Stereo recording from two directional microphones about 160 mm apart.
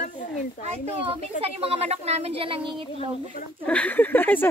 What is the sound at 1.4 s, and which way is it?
Speech, 40° right (ahead or behind).